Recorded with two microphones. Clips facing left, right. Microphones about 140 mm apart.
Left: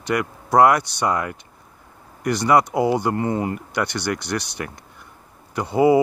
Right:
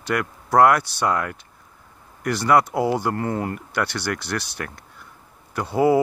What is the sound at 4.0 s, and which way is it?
Speech, 5° right (ahead or behind).